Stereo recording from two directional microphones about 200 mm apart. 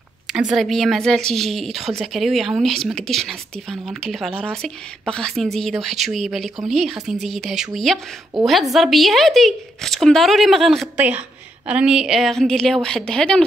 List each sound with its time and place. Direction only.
0.3 s a woman's voice: 5° right (ahead or behind)